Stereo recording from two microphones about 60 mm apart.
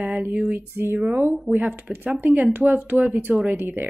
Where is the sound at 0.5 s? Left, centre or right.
Right.